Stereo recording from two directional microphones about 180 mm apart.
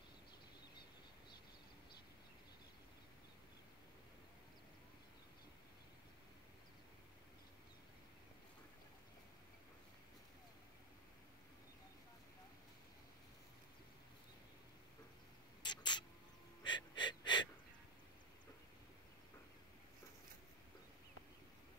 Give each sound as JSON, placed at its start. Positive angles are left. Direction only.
{"t": 15.6, "sound": "rodents", "side_deg": 25}
{"t": 16.6, "sound": "gasp", "side_deg": 25}